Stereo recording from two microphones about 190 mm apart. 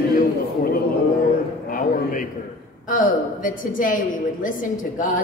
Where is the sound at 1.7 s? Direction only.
45° left (ahead or behind).